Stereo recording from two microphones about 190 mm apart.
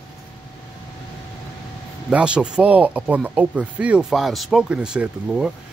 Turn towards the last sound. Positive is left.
turn(degrees=-5)  # may be behind; listen again after turning